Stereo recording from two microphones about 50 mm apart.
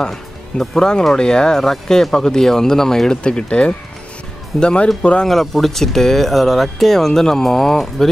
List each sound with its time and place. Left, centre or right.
0.0 s speech: centre
5.2 s speech: centre